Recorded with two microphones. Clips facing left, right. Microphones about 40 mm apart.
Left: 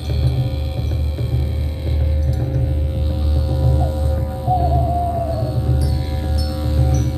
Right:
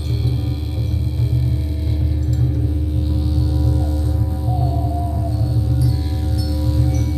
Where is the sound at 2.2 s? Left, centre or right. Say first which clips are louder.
Right 1 dB; centre.